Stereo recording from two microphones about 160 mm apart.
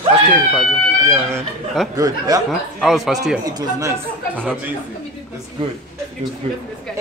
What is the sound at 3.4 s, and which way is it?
Speech, 25° right (ahead or behind).